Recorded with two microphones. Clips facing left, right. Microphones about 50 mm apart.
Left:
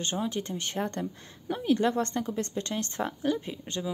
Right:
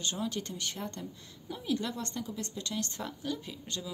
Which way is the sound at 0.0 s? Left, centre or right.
Left.